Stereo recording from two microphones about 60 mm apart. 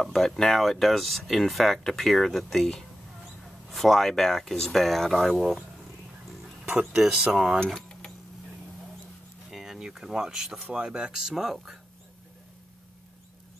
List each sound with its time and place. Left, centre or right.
0.0 s speech: centre
6.9 s speech: centre
9.5 s speech: centre